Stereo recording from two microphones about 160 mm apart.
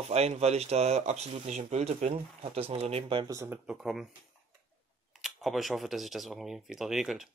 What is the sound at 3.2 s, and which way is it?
Speech, 20° right (ahead or behind).